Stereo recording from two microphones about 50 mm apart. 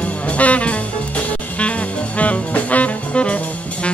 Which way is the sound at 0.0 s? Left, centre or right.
Left.